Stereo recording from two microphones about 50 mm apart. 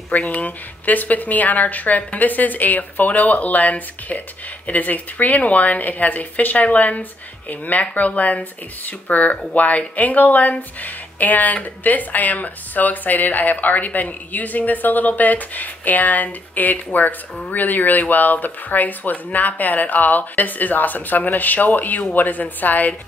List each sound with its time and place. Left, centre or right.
0.1 s speech: left